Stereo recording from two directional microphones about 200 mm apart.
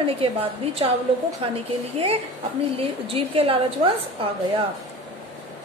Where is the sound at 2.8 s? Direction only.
30° right (ahead or behind).